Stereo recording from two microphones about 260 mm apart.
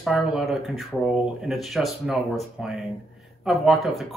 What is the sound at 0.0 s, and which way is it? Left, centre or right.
A man's voice, centre.